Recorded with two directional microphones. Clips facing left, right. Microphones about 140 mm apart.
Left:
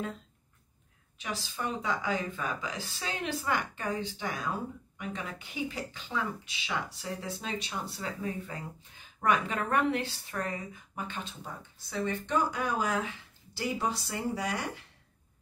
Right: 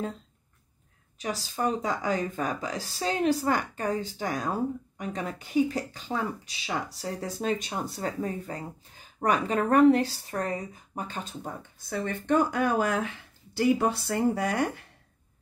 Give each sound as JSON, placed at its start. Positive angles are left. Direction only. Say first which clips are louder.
{"t": 1.1, "sound": "speech", "louder": "right 5 dB", "side_deg": -40}